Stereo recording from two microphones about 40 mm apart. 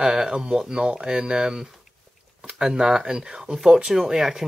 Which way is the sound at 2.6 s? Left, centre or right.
Centre.